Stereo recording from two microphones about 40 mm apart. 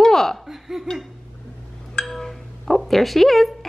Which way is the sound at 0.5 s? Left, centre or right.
Centre.